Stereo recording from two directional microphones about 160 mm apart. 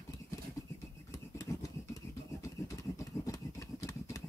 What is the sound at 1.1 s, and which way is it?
Toothbrush, 20° left (ahead or behind).